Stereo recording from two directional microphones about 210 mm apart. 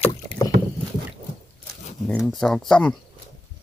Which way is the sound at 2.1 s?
5° left (ahead or behind).